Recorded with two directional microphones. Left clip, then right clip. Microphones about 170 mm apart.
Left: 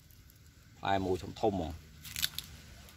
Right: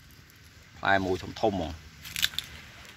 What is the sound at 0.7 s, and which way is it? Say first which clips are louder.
Speech: right 7 dB; 15° right (ahead or behind).